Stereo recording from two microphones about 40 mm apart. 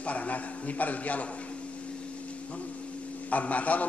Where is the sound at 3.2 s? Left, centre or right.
Left.